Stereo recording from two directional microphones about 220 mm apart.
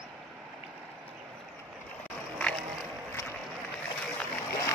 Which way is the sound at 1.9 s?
5° left (ahead or behind).